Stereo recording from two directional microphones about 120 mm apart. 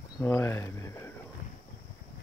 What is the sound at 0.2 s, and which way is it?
Speech, 20° left (ahead or behind).